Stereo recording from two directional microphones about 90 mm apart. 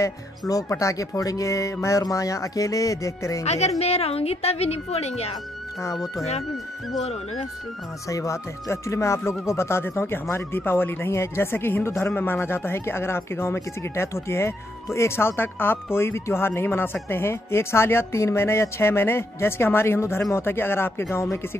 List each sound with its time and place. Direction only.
0.0 s speech: 35° left (ahead or behind)
4.0 s a woman's voice: 90° left
6.5 s speech: centre (ahead or behind)
8.1 s speech: 35° left (ahead or behind)